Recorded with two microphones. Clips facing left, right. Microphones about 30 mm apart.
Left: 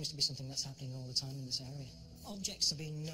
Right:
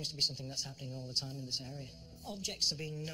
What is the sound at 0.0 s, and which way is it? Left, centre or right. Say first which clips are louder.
Speech: right 2 dB; centre.